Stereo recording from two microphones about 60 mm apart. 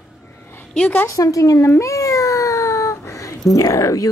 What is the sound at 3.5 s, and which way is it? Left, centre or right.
Speech, left.